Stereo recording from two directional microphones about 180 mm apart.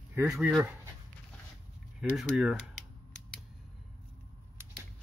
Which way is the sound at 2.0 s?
5° right (ahead or behind).